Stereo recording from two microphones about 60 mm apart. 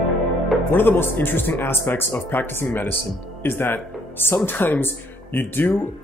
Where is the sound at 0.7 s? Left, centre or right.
Left.